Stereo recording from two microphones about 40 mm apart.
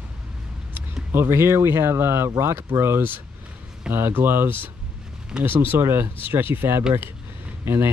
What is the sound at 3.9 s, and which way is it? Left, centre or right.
Speech, right.